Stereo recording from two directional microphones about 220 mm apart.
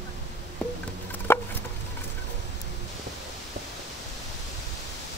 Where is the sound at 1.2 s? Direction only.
10° left (ahead or behind).